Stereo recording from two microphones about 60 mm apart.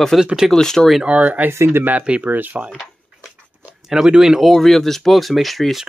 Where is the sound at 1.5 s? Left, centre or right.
Right.